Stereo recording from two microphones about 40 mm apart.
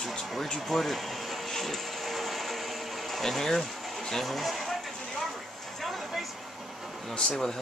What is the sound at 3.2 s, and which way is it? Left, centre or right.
Speech, centre.